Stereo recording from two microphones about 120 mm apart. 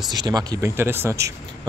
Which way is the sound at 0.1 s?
35° right (ahead or behind).